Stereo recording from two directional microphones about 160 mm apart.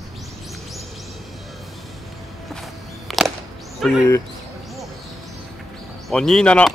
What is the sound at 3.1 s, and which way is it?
Music, centre (ahead or behind).